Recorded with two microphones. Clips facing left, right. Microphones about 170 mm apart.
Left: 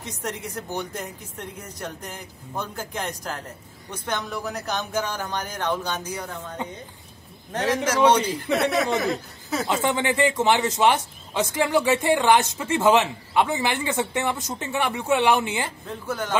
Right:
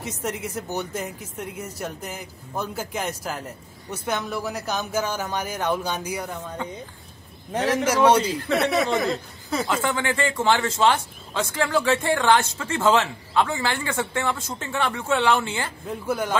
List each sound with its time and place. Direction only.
0.0 s speech: 5° right (ahead or behind)
6.6 s speech: 20° left (ahead or behind)
7.5 s speech: 10° right (ahead or behind)
9.7 s speech: 20° left (ahead or behind)
15.9 s speech: 10° right (ahead or behind)